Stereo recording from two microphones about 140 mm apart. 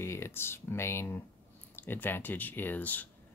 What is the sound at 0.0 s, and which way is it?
Speech, 20° left (ahead or behind).